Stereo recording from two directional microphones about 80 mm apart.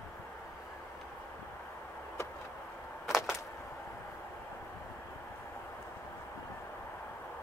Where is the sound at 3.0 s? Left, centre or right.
Centre.